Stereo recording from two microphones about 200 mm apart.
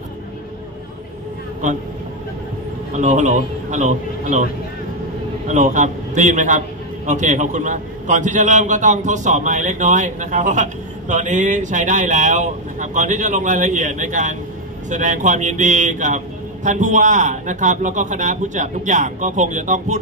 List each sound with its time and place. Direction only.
3.0 s a man's voice: 35° right (ahead or behind)
5.5 s a man's voice: 35° right (ahead or behind)